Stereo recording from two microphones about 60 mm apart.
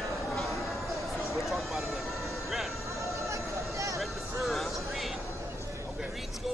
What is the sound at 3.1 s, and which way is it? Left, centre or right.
Vehicle, right.